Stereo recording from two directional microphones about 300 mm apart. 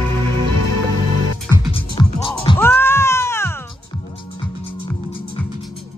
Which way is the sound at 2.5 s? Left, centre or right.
Centre.